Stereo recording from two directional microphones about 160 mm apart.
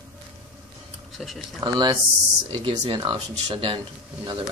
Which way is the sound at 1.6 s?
25° right (ahead or behind).